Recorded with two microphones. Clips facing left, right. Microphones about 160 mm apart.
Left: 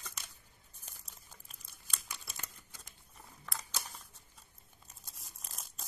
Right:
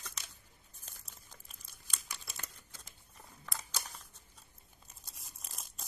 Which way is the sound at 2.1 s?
Centre (ahead or behind).